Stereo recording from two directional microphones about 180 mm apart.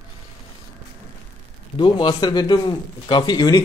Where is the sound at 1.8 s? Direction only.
25° left (ahead or behind).